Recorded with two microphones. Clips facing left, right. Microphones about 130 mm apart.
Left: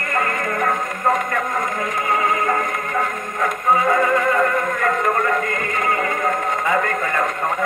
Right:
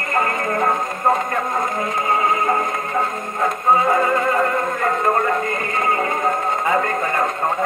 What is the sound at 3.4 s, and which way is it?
Music, 20° right (ahead or behind).